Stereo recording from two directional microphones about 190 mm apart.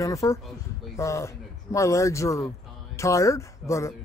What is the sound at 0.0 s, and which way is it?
Speech, 15° left (ahead or behind).